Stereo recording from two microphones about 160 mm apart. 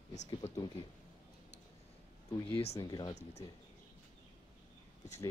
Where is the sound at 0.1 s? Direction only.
50° left (ahead or behind).